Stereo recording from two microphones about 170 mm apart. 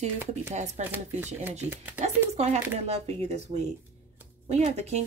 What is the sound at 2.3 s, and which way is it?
Speech, 40° right (ahead or behind).